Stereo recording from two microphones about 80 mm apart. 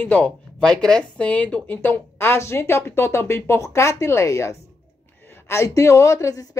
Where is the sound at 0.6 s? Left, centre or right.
Centre.